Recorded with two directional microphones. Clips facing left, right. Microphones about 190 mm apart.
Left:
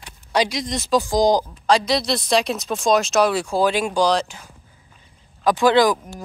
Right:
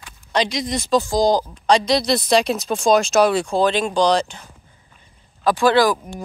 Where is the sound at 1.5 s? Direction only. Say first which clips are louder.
Right 2 dB; 5° left (ahead or behind).